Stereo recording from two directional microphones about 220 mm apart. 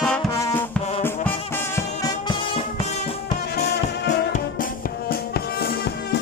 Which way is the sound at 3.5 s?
50° left (ahead or behind).